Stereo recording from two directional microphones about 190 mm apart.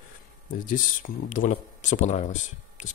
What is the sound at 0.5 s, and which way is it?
A man's voice, 45° left (ahead or behind).